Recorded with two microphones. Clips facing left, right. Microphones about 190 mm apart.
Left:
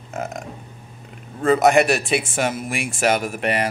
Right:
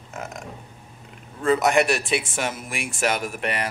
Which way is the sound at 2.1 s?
55° left (ahead or behind).